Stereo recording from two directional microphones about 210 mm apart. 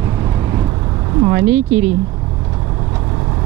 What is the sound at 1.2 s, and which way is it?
Speech, 10° right (ahead or behind).